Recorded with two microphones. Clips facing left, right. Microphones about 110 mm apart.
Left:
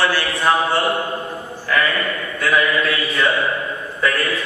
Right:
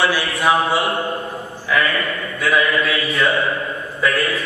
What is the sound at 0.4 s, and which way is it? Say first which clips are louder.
Speech: right 1 dB; centre (ahead or behind).